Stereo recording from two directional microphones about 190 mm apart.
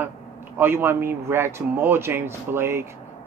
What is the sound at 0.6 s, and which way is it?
Speech, 15° right (ahead or behind).